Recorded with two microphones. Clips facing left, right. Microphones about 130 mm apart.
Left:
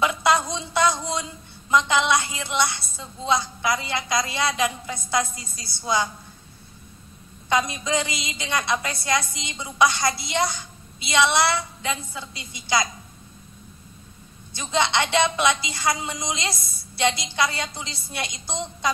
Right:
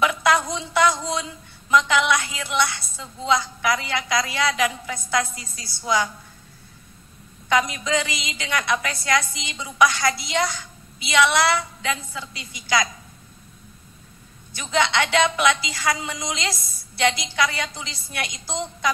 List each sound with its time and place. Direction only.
0.0 s a sound: 25° left (ahead or behind)
1.9 s a woman's voice: 25° left (ahead or behind)
7.7 s a woman's voice: 25° left (ahead or behind)
14.5 s a woman's voice: 25° left (ahead or behind)